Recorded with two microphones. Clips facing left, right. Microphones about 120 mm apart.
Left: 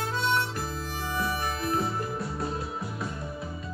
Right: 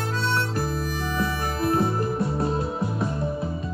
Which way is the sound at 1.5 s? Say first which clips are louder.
Right 6 dB; 35° right (ahead or behind).